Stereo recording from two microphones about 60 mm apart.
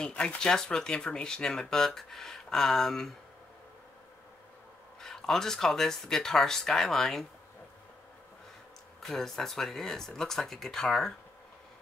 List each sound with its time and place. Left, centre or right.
0.0 s speech: centre
5.0 s speech: centre
9.0 s speech: centre